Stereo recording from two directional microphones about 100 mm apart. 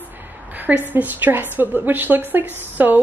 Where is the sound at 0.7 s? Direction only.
20° right (ahead or behind).